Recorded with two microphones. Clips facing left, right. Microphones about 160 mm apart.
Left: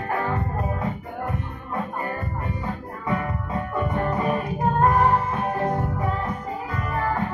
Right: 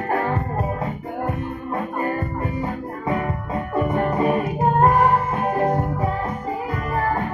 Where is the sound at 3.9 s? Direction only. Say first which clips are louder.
Right 4 dB; 25° right (ahead or behind).